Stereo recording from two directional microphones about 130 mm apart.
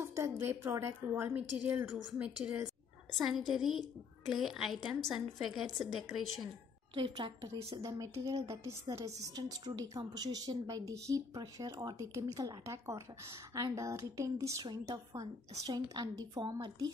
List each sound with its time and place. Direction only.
0.0 s a woman's voice: 20° right (ahead or behind); by 6.0 s centre (ahead or behind)
7.0 s a woman's voice: 40° right (ahead or behind)
7.7 s a woman's voice: 30° right (ahead or behind)